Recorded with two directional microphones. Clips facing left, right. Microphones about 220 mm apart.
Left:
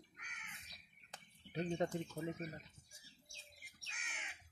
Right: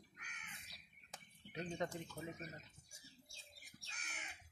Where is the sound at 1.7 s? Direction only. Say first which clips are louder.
Left 4 dB; 30° left (ahead or behind).